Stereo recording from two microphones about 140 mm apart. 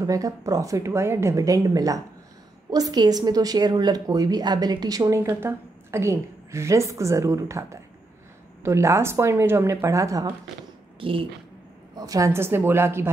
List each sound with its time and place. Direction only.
0.0 s a woman's voice: 25° right (ahead or behind)
5.2 s a woman's voice: 15° right (ahead or behind)
11.0 s speech: 40° right (ahead or behind)
11.9 s speech: 25° right (ahead or behind)